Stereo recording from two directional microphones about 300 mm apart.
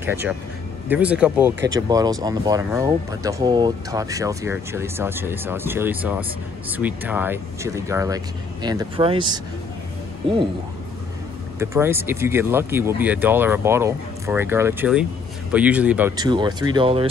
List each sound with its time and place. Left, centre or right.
0.0 s speech: centre
11.6 s speech: centre